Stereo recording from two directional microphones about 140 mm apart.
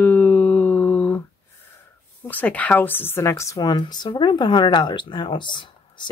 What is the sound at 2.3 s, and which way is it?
A woman's voice, 10° left (ahead or behind).